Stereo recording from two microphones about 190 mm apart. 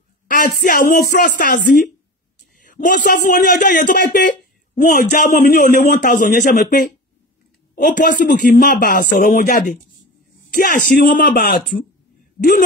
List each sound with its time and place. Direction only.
0.3 s speech: 45° left (ahead or behind)